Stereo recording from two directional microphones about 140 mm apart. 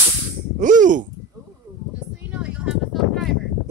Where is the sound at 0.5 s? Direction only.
65° right (ahead or behind).